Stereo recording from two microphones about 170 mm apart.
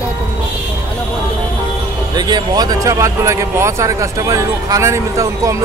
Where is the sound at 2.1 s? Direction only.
25° right (ahead or behind).